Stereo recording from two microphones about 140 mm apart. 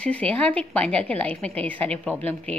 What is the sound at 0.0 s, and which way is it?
A woman's voice, 10° left (ahead or behind).